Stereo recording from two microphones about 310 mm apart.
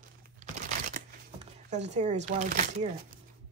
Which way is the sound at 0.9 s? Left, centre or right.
Right.